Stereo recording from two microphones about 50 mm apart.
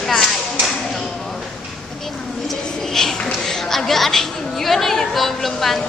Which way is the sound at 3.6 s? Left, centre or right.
Centre.